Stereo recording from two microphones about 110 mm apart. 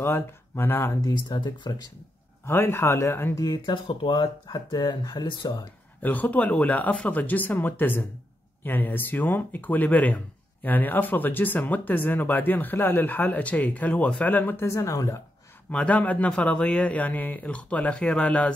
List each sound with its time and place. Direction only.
0.0 s speech: 20° left (ahead or behind)
1.0 s speech: 40° left (ahead or behind)
2.4 s speech: 20° left (ahead or behind)
3.4 s speech: 45° left (ahead or behind)
6.0 s speech: 15° left (ahead or behind)
15.7 s speech: 10° left (ahead or behind)